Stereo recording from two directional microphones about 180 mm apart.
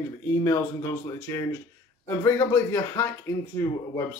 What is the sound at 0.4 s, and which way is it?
Speech, 20° left (ahead or behind).